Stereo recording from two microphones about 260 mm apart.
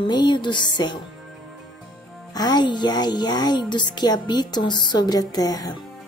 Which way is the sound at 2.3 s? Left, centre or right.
Centre.